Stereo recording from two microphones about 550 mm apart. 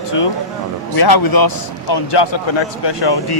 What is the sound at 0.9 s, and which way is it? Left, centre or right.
A man's voice, left.